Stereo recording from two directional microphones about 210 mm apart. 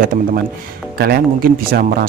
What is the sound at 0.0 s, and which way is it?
Speech, 40° right (ahead or behind).